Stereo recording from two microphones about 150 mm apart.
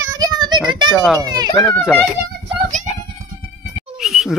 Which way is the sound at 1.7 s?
10° left (ahead or behind).